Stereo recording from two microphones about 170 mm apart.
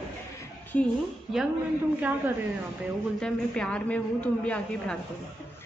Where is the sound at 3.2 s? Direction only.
5° left (ahead or behind).